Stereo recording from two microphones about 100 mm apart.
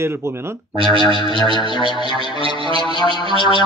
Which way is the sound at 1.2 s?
50° left (ahead or behind).